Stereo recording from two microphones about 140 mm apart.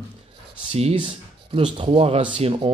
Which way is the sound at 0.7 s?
40° right (ahead or behind).